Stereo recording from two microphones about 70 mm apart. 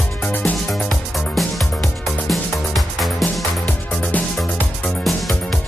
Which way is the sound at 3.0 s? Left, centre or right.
Centre.